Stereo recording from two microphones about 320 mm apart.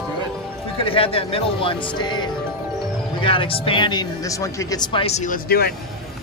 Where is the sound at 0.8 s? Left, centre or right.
Centre.